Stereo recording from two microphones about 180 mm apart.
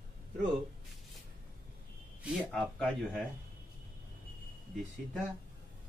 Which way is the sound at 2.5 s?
5° left (ahead or behind).